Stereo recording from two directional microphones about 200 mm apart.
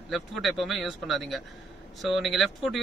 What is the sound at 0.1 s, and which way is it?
Speech, centre (ahead or behind).